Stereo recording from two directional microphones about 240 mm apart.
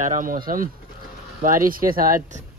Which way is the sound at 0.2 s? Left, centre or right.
Right.